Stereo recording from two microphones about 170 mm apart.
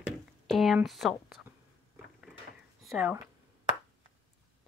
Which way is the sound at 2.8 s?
10° right (ahead or behind).